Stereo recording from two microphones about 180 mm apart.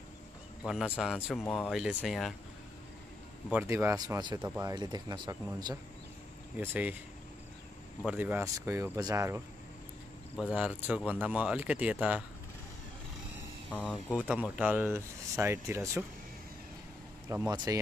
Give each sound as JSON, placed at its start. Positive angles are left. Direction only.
{"t": 0.7, "sound": "a man's voice", "side_deg": -5}
{"t": 1.4, "sound": "speech", "side_deg": 10}
{"t": 1.7, "sound": "a man's voice", "side_deg": -5}
{"t": 3.4, "sound": "speech", "side_deg": -10}
{"t": 4.4, "sound": "speech", "side_deg": -10}
{"t": 6.6, "sound": "speech", "side_deg": -10}
{"t": 8.0, "sound": "speech", "side_deg": -5}
{"t": 10.4, "sound": "speech", "side_deg": -5}
{"t": 13.7, "sound": "speech", "side_deg": 0}
{"t": 17.3, "sound": "speech", "side_deg": -15}